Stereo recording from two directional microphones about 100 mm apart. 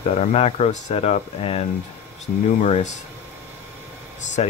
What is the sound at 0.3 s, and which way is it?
Speech, 90° left.